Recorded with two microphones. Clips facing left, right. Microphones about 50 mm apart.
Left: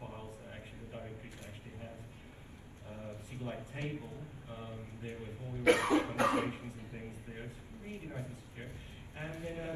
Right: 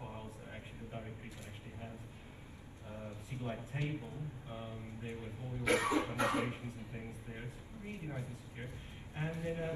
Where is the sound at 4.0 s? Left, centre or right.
Right.